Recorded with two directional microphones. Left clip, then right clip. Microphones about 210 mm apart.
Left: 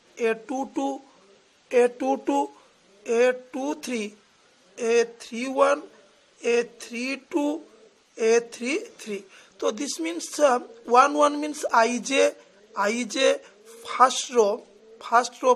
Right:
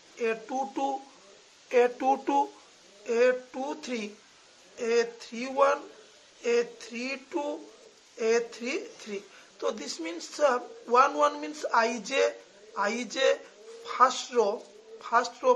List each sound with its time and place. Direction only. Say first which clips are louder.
0.2 s speech: left 4 dB; 45° left (ahead or behind); by 2.4 s 30° left (ahead or behind)
3.1 s speech: left 3 dB; 45° left (ahead or behind)